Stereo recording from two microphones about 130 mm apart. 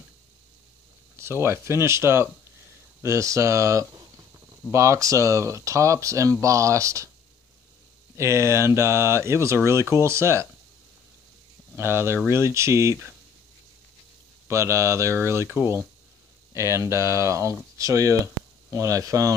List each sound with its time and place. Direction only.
1.2 s speech: 20° right (ahead or behind)
8.2 s speech: 20° right (ahead or behind)
11.7 s speech: 20° right (ahead or behind)
14.5 s speech: 20° right (ahead or behind)